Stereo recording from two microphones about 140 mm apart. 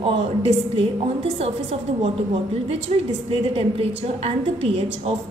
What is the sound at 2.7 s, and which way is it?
A woman's voice, 45° right (ahead or behind).